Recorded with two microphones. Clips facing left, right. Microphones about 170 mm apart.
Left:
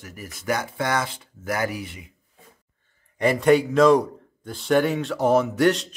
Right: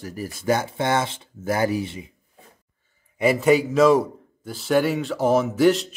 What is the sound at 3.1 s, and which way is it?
A man's voice, 5° right (ahead or behind).